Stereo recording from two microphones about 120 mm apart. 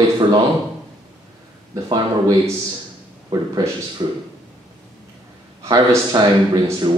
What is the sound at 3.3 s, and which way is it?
Speech, 35° right (ahead or behind).